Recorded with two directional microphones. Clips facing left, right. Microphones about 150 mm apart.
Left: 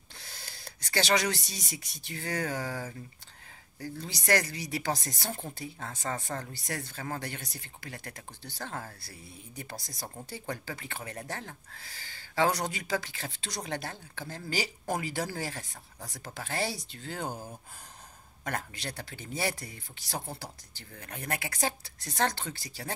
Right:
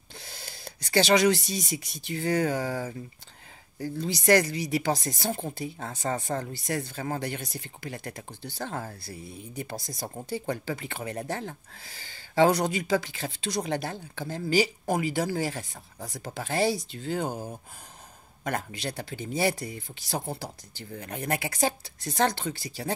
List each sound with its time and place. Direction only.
0.1 s speech: 20° right (ahead or behind)
4.5 s speech: 15° right (ahead or behind)